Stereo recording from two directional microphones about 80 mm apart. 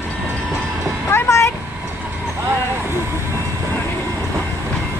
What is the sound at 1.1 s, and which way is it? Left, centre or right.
Vehicle, left.